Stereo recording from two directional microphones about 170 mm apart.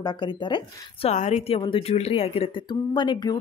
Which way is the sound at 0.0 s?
25° left (ahead or behind).